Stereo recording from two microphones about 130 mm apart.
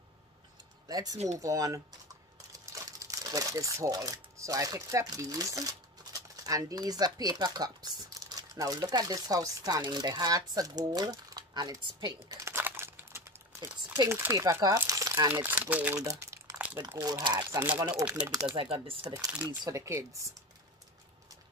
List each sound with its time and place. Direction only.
0.8 s speech: 30° right (ahead or behind)
1.1 s speech: 60° right (ahead or behind)
1.4 s speech: 25° right (ahead or behind)
15.3 s speech: 15° right (ahead or behind)
15.9 s crumpling: 25° right (ahead or behind)
16.7 s speech: 30° right (ahead or behind)
17.4 s speech: 15° right (ahead or behind)
18.0 s speech: 10° right (ahead or behind)
18.5 s speech: 40° right (ahead or behind)
19.4 s speech: 25° right (ahead or behind)